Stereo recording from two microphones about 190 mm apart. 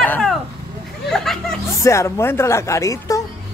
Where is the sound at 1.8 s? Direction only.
15° left (ahead or behind).